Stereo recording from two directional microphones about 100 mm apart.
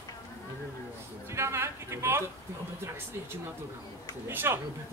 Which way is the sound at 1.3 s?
25° right (ahead or behind).